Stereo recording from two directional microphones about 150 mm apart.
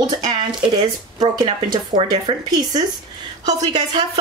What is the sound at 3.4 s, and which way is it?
Speech, 30° right (ahead or behind).